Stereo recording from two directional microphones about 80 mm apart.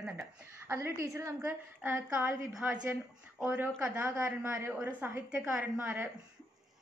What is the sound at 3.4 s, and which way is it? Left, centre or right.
A woman's voice, right.